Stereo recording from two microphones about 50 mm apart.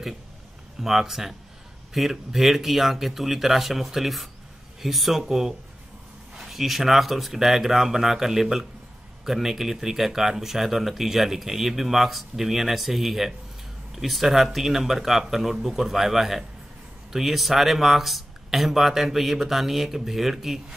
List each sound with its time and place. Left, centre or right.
0.7 s speech: centre